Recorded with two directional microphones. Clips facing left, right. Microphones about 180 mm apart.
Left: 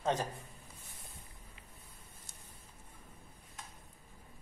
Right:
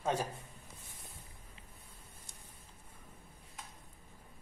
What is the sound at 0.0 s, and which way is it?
Speech, 10° right (ahead or behind).